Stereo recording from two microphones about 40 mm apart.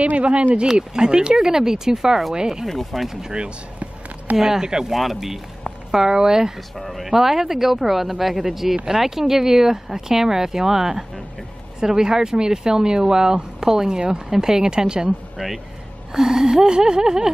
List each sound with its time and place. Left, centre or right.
0.0 s speech: right; by 2.6 s centre
2.7 s speech: centre
3.1 s speech: centre
3.3 s a sound: right
4.4 s speech: centre
4.9 s speech: centre
5.9 s speech: centre
15.3 s speech: centre